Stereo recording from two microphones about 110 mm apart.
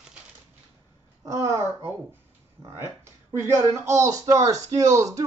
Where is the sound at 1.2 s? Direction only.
25° right (ahead or behind).